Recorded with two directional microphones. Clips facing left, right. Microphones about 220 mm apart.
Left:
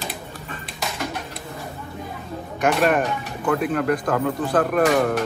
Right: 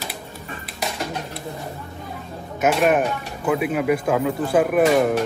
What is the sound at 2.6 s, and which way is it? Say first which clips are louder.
Speech: right 1 dB; 5° right (ahead or behind).